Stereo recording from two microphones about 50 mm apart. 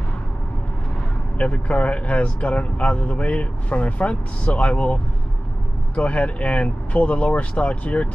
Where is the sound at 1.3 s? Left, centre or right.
Left.